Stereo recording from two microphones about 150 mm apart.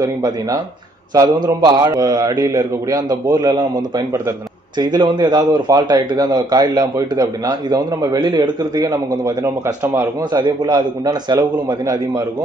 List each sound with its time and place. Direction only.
0.0 s speech: 25° right (ahead or behind)
4.7 s speech: 30° right (ahead or behind)